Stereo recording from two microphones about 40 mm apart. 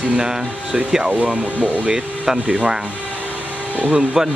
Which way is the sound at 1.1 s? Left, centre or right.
Right.